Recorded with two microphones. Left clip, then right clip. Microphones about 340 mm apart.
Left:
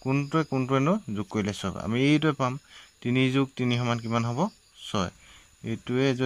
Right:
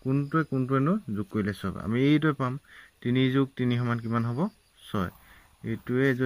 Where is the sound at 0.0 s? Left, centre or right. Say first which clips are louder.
Left 1 dB; centre.